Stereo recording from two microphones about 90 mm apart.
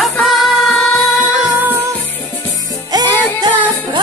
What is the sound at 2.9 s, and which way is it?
Music, 45° right (ahead or behind).